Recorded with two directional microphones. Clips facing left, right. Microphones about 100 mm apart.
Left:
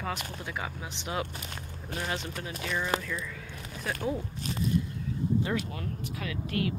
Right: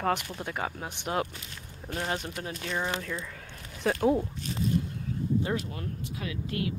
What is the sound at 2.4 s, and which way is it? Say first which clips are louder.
Speech: right 1 dB; 30° right (ahead or behind).